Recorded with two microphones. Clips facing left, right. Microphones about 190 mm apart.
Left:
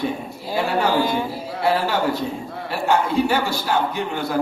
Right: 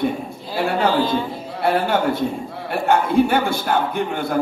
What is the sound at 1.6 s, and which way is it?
A man's voice, 55° right (ahead or behind).